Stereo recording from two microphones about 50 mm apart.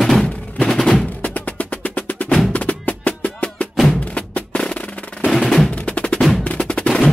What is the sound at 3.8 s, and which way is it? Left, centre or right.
Percussion, left.